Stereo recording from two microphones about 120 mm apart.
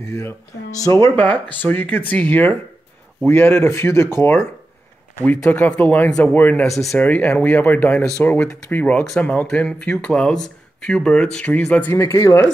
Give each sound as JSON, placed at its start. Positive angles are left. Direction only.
{"t": 0.7, "sound": "speech", "side_deg": 25}
{"t": 1.1, "sound": "speech", "side_deg": 10}
{"t": 5.5, "sound": "speech", "side_deg": 10}
{"t": 6.6, "sound": "speech", "side_deg": 0}
{"t": 7.0, "sound": "speech", "side_deg": 15}